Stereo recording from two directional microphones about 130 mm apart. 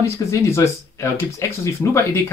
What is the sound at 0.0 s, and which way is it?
Speech, 20° left (ahead or behind).